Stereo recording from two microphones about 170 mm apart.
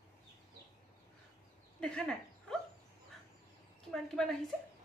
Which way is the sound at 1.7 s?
5° left (ahead or behind).